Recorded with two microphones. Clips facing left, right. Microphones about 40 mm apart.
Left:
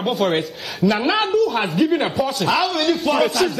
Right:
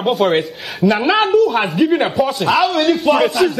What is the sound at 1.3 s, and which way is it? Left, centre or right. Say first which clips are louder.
A man's voice: right 5 dB; centre.